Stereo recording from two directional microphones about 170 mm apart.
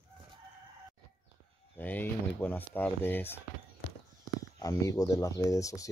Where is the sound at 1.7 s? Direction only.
10° left (ahead or behind).